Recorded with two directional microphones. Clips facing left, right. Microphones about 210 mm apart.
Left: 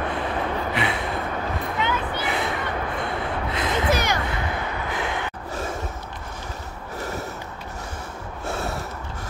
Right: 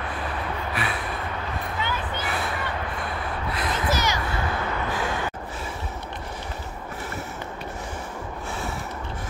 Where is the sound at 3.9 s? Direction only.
55° left (ahead or behind).